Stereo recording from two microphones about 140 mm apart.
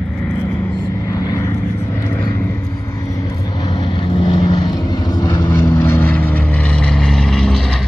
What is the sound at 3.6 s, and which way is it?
Vehicle, 35° left (ahead or behind).